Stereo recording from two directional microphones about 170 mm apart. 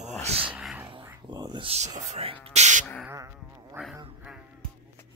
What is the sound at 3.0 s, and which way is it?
Cat, 15° right (ahead or behind).